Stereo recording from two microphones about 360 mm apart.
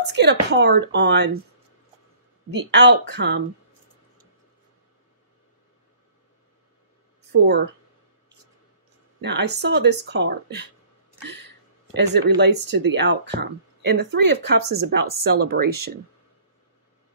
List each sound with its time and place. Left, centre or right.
0.1 s speech: right
2.5 s speech: right
7.4 s speech: right
9.2 s speech: right
11.9 s speech: right